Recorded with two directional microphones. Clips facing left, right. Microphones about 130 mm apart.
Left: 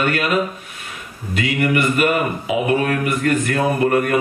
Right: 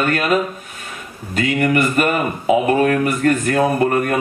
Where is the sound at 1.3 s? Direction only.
40° right (ahead or behind).